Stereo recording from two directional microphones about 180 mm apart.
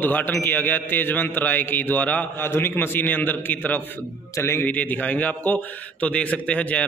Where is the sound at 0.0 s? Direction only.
10° left (ahead or behind).